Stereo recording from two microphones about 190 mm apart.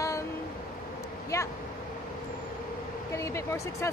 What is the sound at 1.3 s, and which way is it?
Vehicle, 15° left (ahead or behind).